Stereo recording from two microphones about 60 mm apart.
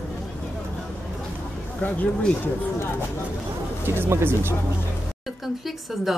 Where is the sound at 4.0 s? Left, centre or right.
Right.